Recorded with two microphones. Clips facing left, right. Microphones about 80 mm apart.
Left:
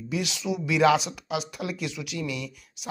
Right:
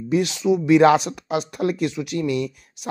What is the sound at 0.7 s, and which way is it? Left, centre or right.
Speech, right.